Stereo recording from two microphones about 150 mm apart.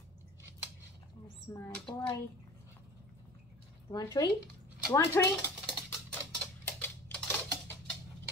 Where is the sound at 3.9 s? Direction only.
25° left (ahead or behind).